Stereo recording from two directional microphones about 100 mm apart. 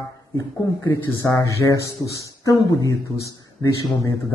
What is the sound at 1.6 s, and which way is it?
A man's voice, 30° left (ahead or behind).